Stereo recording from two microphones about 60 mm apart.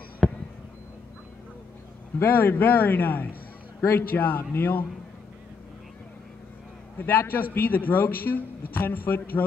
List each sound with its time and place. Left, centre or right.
0.2 s basketball bounce: centre
2.1 s a man's voice: left
7.0 s a man's voice: left